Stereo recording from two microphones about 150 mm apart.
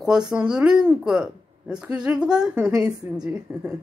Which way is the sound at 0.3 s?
5° right (ahead or behind).